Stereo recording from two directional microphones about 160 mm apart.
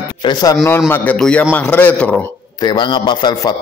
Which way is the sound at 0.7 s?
15° left (ahead or behind).